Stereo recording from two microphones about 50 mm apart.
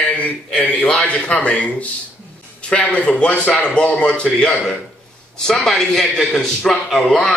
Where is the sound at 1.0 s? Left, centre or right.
Left.